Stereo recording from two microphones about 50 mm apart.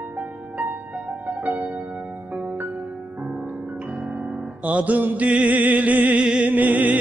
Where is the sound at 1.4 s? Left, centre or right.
Right.